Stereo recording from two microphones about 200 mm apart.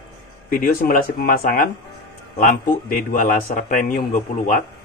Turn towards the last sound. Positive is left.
turn(degrees=40)  # may be behind; listen again after turning